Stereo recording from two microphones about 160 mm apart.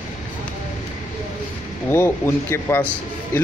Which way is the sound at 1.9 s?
15° left (ahead or behind).